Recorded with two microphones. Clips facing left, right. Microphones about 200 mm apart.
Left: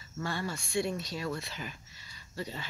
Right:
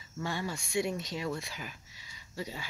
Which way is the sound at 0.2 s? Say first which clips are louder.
Even; 15° right (ahead or behind).